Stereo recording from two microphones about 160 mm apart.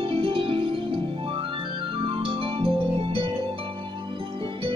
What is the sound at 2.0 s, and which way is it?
Music, 35° right (ahead or behind).